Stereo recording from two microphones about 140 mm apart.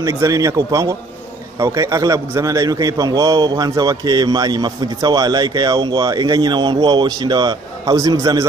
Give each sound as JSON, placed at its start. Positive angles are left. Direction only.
{"t": 0.0, "sound": "a man's voice", "side_deg": -20}